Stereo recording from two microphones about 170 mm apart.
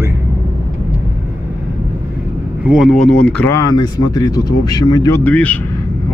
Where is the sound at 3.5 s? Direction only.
20° left (ahead or behind).